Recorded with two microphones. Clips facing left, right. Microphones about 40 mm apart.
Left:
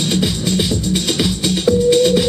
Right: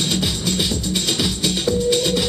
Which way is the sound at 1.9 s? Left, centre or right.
Centre.